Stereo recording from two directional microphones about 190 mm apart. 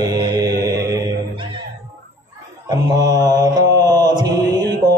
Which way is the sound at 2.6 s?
20° right (ahead or behind).